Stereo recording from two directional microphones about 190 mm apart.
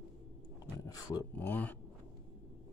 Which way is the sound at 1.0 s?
15° left (ahead or behind).